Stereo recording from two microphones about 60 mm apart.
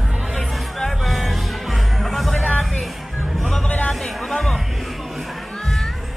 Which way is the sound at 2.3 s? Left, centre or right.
Centre.